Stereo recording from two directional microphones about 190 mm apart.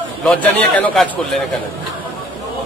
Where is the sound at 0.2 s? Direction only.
5° left (ahead or behind).